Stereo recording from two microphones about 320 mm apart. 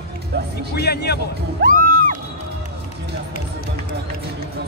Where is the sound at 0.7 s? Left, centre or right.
Left.